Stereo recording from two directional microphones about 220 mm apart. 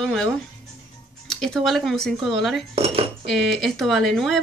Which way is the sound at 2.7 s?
25° right (ahead or behind).